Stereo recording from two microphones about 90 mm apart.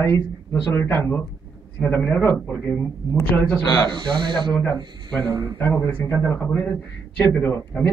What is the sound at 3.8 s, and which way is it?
Speech, 60° right (ahead or behind).